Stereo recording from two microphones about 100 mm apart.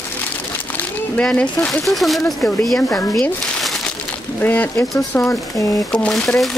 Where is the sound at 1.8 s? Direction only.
Centre (ahead or behind).